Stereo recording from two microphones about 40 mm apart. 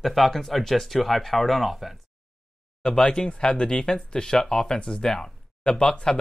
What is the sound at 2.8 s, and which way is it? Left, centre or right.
Speech, left.